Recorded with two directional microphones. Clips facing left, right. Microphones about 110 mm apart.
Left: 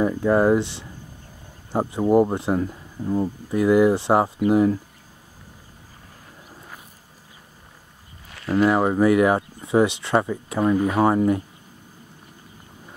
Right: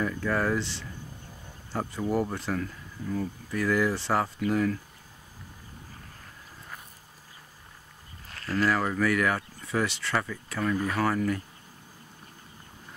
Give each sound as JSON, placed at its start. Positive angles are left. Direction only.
{"t": 0.0, "sound": "speech", "side_deg": 30}
{"t": 1.7, "sound": "speech", "side_deg": 30}
{"t": 8.5, "sound": "speech", "side_deg": 25}